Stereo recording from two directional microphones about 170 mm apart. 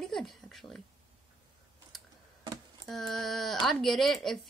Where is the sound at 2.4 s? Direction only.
20° right (ahead or behind).